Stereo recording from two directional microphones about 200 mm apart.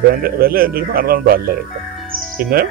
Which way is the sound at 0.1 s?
50° right (ahead or behind).